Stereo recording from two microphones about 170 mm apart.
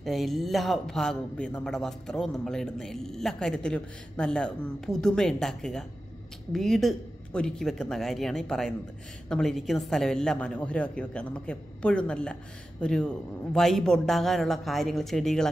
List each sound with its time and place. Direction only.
0.0 s a man's voice: centre (ahead or behind)